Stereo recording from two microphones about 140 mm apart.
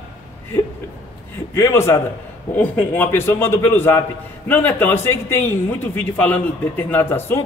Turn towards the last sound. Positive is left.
turn(degrees=15)  # may be behind; listen again after turning